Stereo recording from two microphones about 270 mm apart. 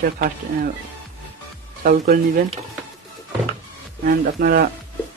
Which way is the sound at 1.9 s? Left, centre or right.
Right.